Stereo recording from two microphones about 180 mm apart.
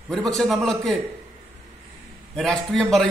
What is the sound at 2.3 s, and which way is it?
Speech, 5° left (ahead or behind).